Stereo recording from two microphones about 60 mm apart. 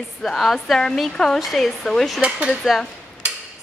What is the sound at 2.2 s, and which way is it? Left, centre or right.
Speech, centre.